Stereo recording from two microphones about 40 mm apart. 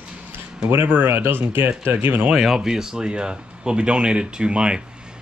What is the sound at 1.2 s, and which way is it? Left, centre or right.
Speech, right.